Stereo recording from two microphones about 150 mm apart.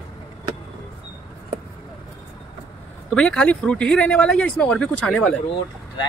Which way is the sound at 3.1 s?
5° left (ahead or behind).